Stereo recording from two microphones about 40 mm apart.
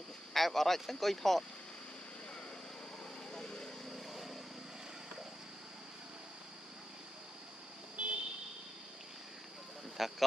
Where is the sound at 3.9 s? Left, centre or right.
Centre.